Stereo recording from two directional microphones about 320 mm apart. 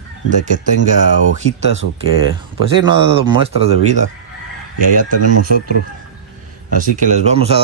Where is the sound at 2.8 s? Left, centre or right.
Centre.